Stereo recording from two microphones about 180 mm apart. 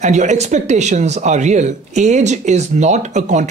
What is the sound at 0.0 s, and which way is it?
Speech, 40° right (ahead or behind).